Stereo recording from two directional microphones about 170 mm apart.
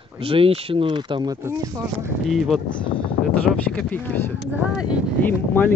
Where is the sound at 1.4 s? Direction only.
15° right (ahead or behind).